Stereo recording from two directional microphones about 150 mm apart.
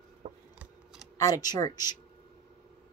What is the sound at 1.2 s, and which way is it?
Speech, 25° left (ahead or behind).